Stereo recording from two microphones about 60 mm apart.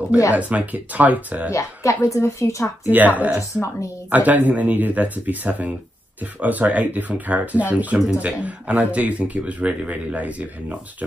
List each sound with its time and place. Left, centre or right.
0.3 s speech: right
1.5 s speech: left
2.9 s speech: right